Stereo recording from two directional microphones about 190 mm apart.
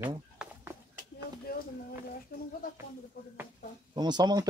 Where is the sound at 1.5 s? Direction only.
55° left (ahead or behind).